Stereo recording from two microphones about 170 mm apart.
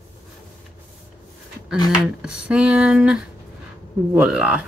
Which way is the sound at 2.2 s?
5° right (ahead or behind).